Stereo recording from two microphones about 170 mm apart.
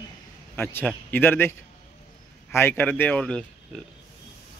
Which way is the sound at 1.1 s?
10° left (ahead or behind).